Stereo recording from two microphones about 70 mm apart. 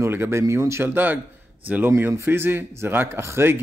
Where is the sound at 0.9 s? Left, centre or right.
Right.